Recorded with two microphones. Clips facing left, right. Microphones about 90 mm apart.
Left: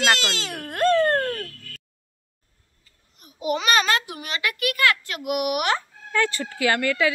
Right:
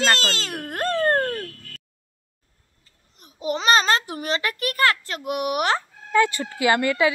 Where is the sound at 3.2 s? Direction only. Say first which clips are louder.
Even; 35° right (ahead or behind).